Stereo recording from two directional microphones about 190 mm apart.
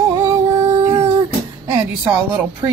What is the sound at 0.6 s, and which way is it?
Humming, 15° right (ahead or behind).